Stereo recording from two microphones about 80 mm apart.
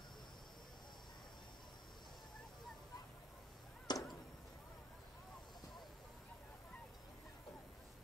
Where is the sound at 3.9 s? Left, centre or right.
Left.